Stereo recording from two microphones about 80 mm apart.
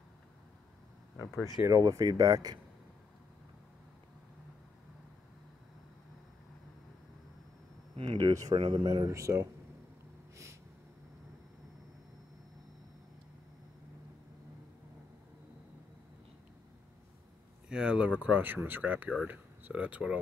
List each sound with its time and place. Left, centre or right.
1.1 s speech: left
1.6 s speech: right
8.0 s speech: right
8.3 s speech: right
8.5 s speech: right
9.1 s speech: right
10.3 s a sound: right
17.6 s speech: centre